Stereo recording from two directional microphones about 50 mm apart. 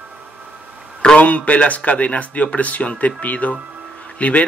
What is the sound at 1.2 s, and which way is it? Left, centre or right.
Speech, left.